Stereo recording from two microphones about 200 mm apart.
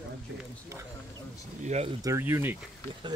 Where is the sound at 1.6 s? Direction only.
35° right (ahead or behind).